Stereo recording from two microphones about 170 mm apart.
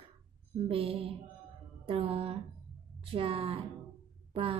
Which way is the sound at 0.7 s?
30° right (ahead or behind).